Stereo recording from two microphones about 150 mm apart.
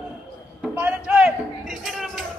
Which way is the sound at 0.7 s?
10° right (ahead or behind).